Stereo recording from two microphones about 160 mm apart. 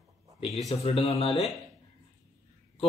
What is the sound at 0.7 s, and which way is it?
Speech, 40° left (ahead or behind).